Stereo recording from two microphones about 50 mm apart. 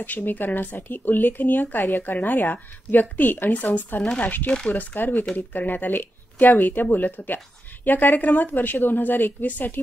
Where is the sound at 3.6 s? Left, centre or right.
Left.